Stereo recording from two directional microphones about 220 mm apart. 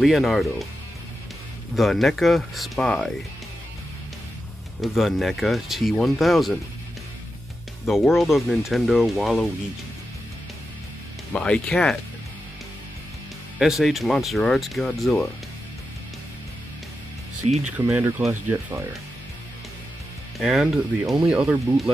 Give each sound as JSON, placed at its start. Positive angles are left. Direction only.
{"t": 0.0, "sound": "speech", "side_deg": 0}
{"t": 1.8, "sound": "speech", "side_deg": 0}
{"t": 4.8, "sound": "speech", "side_deg": 0}
{"t": 7.8, "sound": "speech", "side_deg": 0}
{"t": 11.3, "sound": "speech", "side_deg": 5}
{"t": 13.6, "sound": "speech", "side_deg": 0}
{"t": 17.4, "sound": "speech", "side_deg": -30}
{"t": 17.7, "sound": "speech", "side_deg": -10}
{"t": 20.3, "sound": "speech", "side_deg": 0}